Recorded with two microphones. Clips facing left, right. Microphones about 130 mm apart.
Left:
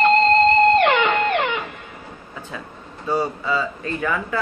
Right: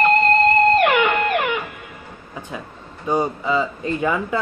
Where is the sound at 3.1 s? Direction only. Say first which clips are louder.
Right 2 dB; 20° right (ahead or behind).